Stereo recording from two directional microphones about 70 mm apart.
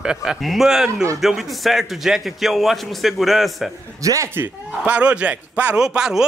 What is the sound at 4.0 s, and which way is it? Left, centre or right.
Speech, right.